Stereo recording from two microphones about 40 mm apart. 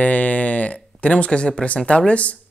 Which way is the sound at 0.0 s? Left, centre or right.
Left.